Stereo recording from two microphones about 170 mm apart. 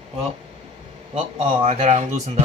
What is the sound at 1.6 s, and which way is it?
Speech, 40° right (ahead or behind).